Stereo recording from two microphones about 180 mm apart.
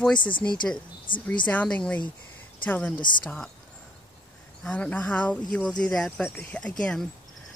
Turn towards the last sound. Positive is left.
turn(degrees=5)  # may be behind; listen again after turning